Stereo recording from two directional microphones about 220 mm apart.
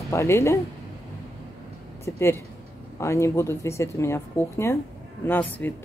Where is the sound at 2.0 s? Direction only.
10° left (ahead or behind).